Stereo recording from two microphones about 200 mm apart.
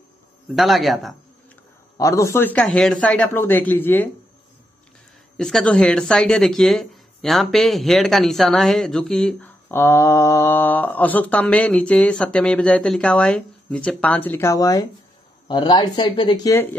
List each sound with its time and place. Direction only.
0.6 s speech: centre (ahead or behind)
2.0 s speech: 15° left (ahead or behind)
5.4 s speech: 5° left (ahead or behind); by 16.6 s 20° left (ahead or behind)